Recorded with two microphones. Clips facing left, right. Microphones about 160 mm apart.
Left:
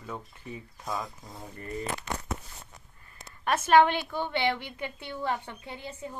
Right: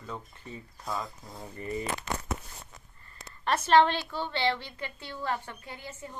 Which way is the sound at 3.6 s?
15° left (ahead or behind).